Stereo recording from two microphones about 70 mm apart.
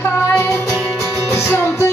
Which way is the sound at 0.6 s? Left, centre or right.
Centre.